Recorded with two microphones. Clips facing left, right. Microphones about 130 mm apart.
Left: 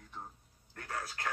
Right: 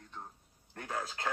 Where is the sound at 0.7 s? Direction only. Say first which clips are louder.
Right 3 dB; 20° right (ahead or behind).